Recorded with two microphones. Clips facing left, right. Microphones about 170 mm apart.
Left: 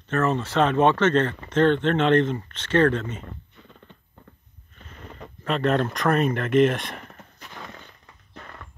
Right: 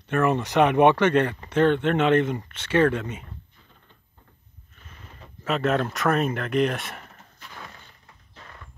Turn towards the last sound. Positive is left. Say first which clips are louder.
# left 4 dB
turn(degrees=0)  # may be behind; listen again after turning